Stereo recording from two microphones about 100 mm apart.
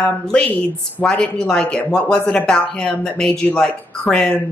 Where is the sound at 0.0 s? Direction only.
10° left (ahead or behind).